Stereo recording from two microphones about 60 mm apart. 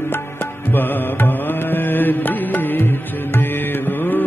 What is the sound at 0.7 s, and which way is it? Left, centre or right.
Music, left.